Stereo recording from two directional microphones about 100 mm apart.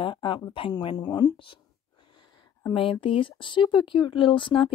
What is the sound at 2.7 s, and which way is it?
Speech, 65° left (ahead or behind).